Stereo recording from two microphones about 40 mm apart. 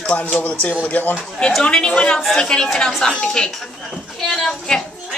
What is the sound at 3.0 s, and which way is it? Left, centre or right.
Speech, centre.